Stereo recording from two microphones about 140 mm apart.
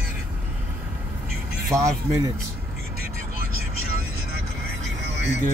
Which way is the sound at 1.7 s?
25° right (ahead or behind).